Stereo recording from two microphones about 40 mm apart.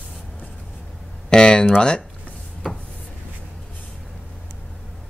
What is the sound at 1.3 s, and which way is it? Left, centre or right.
Speech, left.